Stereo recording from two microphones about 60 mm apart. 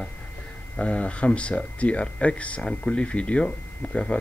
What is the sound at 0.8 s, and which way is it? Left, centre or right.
Speech, centre.